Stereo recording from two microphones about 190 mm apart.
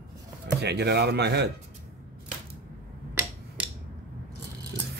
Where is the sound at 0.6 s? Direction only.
60° right (ahead or behind).